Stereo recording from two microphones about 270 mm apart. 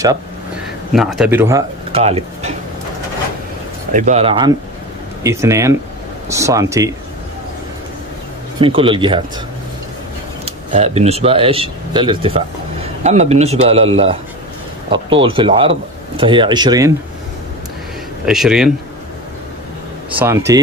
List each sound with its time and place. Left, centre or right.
0.9 s speech: centre
1.9 s speech: right
3.9 s speech: right
8.5 s speech: centre
10.4 s speech: right
14.9 s speech: centre
18.2 s speech: centre
20.2 s speech: centre